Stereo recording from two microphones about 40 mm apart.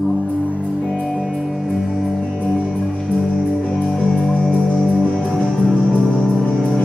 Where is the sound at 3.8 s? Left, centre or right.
Centre.